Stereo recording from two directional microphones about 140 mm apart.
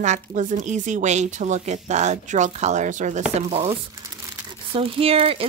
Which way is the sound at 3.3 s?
45° right (ahead or behind).